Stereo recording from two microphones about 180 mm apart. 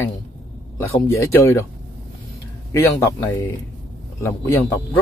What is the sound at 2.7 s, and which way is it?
Speech, 15° left (ahead or behind).